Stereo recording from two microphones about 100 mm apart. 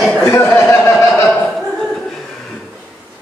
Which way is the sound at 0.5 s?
25° left (ahead or behind).